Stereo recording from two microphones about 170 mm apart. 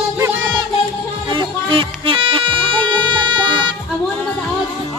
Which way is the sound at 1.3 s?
30° right (ahead or behind).